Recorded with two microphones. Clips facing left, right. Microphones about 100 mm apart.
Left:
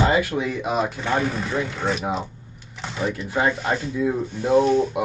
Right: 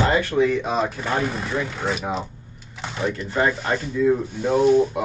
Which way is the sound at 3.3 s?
5° left (ahead or behind).